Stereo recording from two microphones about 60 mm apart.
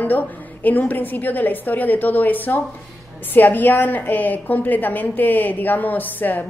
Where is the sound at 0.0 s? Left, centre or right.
Left.